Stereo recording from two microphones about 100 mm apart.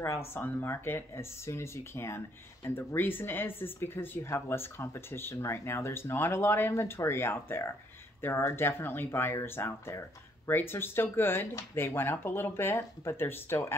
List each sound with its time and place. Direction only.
0.0 s speech: 25° left (ahead or behind)